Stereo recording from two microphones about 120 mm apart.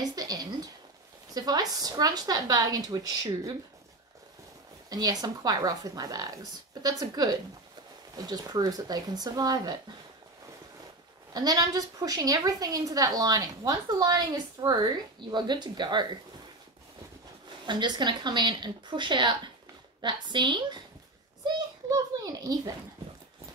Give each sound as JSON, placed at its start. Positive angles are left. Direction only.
{"t": 0.0, "sound": "a sound", "side_deg": -35}
{"t": 1.3, "sound": "a woman's voice", "side_deg": -35}
{"t": 4.8, "sound": "a woman's voice", "side_deg": -30}
{"t": 11.3, "sound": "a woman's voice", "side_deg": -30}
{"t": 17.6, "sound": "a woman's voice", "side_deg": -40}
{"t": 21.5, "sound": "a sound", "side_deg": -35}